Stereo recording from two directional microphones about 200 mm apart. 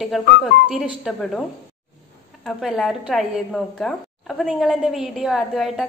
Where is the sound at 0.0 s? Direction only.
Centre (ahead or behind).